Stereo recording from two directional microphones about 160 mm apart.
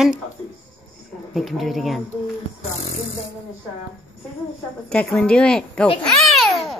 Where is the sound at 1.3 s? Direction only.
Centre (ahead or behind).